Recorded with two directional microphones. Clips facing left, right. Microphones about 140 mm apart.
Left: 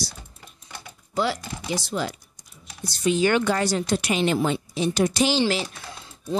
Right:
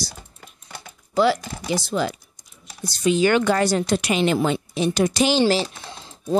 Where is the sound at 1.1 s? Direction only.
90° right.